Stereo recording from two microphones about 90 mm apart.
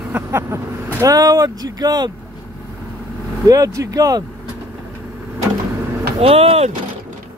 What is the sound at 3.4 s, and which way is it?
Speech, 40° right (ahead or behind).